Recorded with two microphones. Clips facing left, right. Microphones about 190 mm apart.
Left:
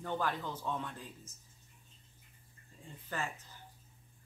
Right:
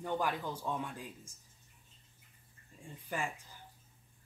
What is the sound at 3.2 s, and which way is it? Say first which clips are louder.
Speech: right 1 dB; 15° right (ahead or behind).